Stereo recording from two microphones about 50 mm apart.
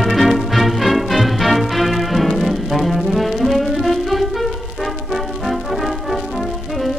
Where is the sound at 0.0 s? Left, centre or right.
Centre.